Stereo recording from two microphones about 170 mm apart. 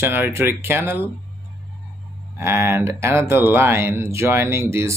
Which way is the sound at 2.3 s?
15° right (ahead or behind).